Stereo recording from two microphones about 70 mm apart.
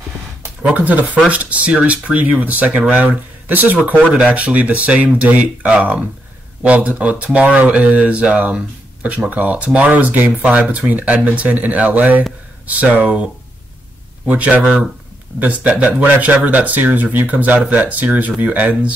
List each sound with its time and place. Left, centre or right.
0.6 s speech: right